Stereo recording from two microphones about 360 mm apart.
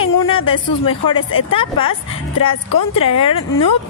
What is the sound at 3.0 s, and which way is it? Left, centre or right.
Speech, centre.